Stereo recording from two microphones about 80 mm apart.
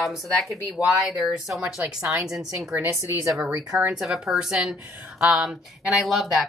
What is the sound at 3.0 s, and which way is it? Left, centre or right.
Speech, right.